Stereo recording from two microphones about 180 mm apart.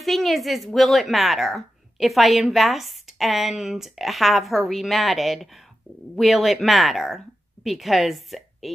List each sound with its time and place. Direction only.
0.0 s a woman's voice: centre (ahead or behind)